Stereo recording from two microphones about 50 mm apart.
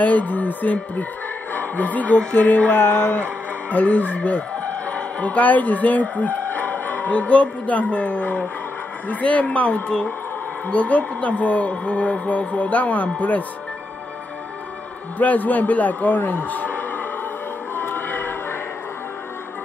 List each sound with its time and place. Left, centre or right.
0.0 s a man's voice: left
15.1 s a man's voice: left
17.7 s music: left